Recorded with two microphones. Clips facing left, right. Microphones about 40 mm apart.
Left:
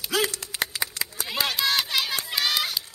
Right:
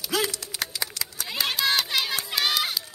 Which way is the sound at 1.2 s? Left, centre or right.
Centre.